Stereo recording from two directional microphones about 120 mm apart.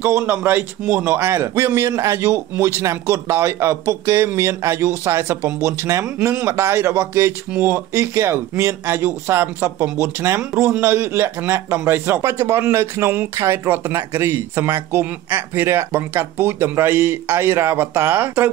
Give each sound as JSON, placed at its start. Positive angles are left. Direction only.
{"t": 0.0, "sound": "a man's voice", "side_deg": -15}